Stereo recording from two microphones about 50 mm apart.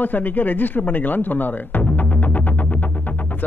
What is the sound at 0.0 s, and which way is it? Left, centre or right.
A man's voice, left.